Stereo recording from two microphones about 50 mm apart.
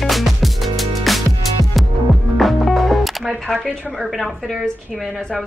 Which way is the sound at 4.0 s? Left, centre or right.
Centre.